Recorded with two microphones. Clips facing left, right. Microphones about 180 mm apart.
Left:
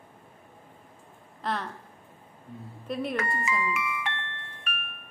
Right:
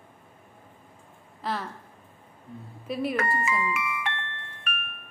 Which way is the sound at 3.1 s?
55° right (ahead or behind).